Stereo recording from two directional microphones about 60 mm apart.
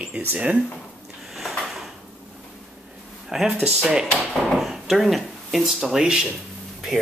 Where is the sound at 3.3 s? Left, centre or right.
Centre.